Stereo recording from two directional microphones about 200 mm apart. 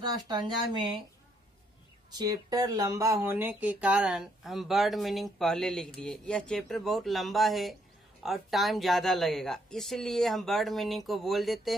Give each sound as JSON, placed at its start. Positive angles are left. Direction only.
{"t": 0.0, "sound": "speech", "side_deg": -20}
{"t": 2.0, "sound": "speech", "side_deg": -20}